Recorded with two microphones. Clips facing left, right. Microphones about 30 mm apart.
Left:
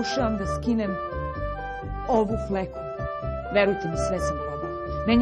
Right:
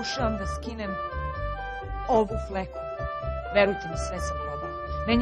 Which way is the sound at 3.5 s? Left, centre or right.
Centre.